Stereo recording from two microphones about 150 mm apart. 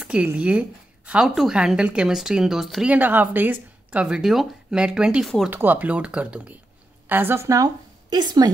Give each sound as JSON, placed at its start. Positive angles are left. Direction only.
{"t": 0.0, "sound": "a woman's voice", "side_deg": -10}